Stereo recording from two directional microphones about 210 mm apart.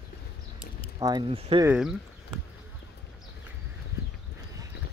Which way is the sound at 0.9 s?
20° right (ahead or behind).